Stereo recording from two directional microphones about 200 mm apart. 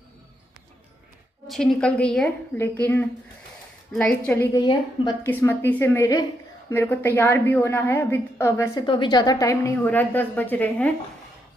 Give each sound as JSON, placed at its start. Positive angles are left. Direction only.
{"t": 1.5, "sound": "a woman's voice", "side_deg": 0}
{"t": 4.6, "sound": "a woman's voice", "side_deg": 20}